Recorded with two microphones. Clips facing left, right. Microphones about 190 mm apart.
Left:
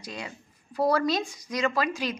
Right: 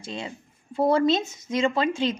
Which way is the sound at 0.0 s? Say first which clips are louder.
Right 4 dB; 25° right (ahead or behind).